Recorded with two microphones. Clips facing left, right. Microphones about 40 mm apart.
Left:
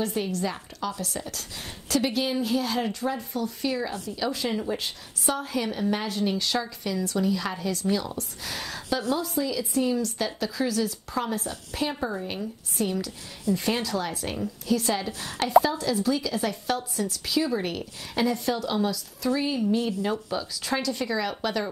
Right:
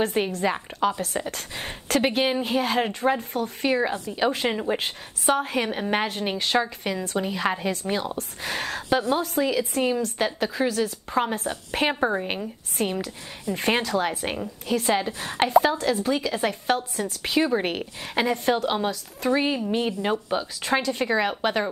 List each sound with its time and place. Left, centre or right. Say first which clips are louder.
0.0 s a woman's voice: right 4 dB; right
3.9 s a woman's voice: right 4 dB; right
4.2 s a woman's voice: right 4 dB; right
9.9 s a woman's voice: right 3 dB; right